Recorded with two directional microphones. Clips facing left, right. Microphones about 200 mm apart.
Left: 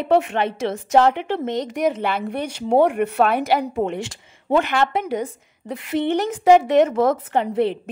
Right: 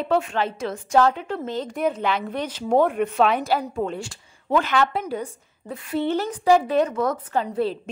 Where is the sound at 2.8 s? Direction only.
70° left (ahead or behind).